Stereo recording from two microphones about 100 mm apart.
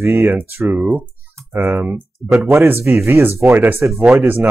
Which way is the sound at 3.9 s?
Centre (ahead or behind).